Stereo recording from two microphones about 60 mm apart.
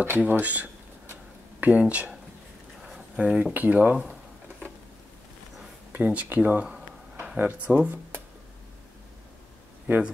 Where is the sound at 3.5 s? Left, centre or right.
Right.